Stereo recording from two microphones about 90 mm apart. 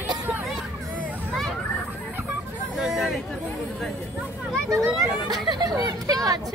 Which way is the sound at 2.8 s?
5° right (ahead or behind).